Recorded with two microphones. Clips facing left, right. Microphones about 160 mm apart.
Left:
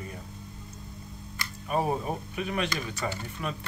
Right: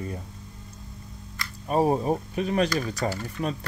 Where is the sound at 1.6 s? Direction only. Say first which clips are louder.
Right 6 dB; 35° right (ahead or behind).